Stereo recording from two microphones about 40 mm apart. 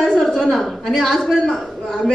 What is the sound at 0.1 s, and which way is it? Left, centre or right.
A woman's voice, centre.